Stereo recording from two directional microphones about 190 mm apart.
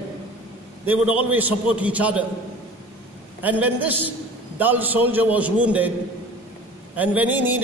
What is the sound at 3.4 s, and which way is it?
A man's voice, 10° right (ahead or behind).